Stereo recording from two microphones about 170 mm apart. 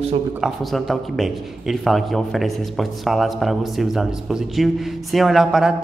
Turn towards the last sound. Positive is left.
turn(degrees=-5)  # may be behind; listen again after turning